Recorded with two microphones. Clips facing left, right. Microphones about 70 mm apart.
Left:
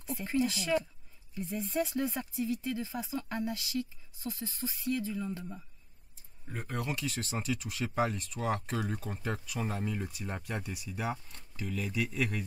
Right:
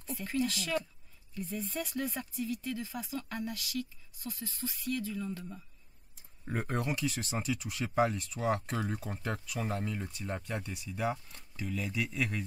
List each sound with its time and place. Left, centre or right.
0.0 s speech: centre
6.6 s speech: right
6.9 s speech: centre